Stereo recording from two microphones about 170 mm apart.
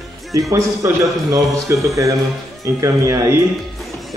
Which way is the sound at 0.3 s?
20° right (ahead or behind).